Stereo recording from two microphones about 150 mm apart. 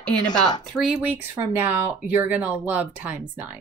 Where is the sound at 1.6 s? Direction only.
10° right (ahead or behind).